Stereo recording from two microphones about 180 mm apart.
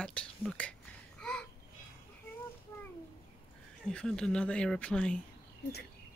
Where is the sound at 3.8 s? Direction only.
5° left (ahead or behind).